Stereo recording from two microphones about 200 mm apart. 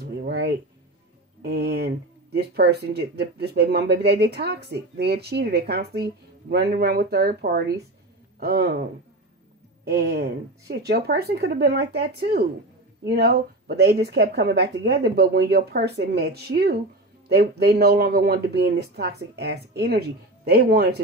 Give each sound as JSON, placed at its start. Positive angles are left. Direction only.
{"t": 0.2, "sound": "a sound", "side_deg": -55}
{"t": 2.3, "sound": "speech", "side_deg": -55}
{"t": 9.8, "sound": "speech", "side_deg": -55}